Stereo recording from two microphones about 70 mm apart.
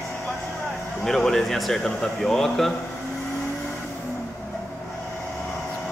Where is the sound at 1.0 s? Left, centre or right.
Centre.